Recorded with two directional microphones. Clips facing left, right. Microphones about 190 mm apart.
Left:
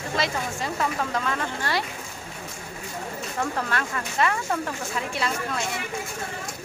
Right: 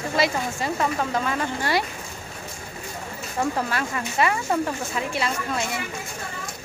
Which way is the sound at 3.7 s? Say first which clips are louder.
Right 1 dB; 10° right (ahead or behind).